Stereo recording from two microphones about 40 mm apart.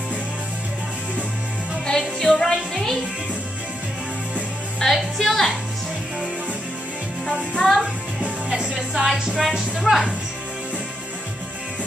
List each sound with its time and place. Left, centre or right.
1.9 s music: centre
4.8 s a woman's voice: centre
7.6 s music: centre
8.5 s music: centre
8.7 s music: centre
9.8 s speech: centre